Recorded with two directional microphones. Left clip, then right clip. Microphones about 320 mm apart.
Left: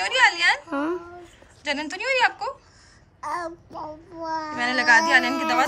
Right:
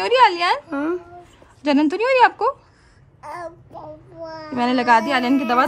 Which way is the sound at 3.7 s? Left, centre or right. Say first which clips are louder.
Left 1 dB; left.